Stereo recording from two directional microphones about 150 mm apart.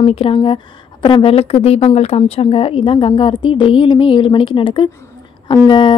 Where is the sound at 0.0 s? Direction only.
40° left (ahead or behind).